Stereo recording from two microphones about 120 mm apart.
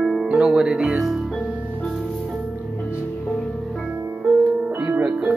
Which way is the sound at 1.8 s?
5° left (ahead or behind).